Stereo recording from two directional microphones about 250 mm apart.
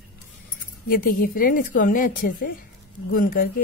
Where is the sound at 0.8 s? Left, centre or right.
Left.